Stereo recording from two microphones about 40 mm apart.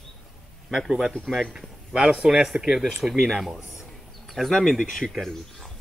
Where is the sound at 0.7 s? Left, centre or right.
Centre.